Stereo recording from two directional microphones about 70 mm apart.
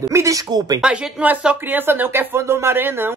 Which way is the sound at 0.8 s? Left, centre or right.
Centre.